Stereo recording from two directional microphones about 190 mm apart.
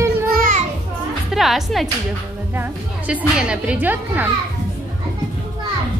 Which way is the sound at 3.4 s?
5° right (ahead or behind).